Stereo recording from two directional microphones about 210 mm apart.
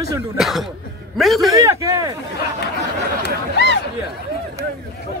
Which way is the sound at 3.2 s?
55° left (ahead or behind).